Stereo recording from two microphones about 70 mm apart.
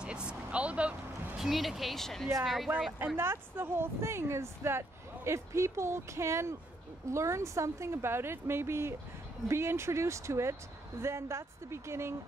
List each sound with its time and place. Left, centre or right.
0.0 s vehicle: centre
1.4 s speech: centre
3.2 s speech: right